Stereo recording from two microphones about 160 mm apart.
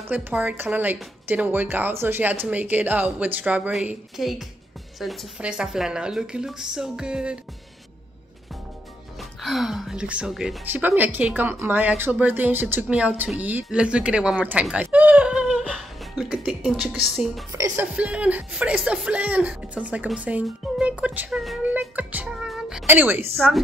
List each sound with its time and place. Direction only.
0.1 s a woman's voice: 10° right (ahead or behind)
9.4 s a woman's voice: centre (ahead or behind)
15.7 s music: 5° right (ahead or behind)
17.0 s a woman's voice: centre (ahead or behind)
17.5 s speech: 20° right (ahead or behind)
17.9 s speech: 5° right (ahead or behind)
23.3 s a woman's voice: centre (ahead or behind)